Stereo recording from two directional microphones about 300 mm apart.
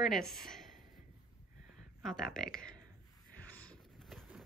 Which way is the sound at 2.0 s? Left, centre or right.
Centre.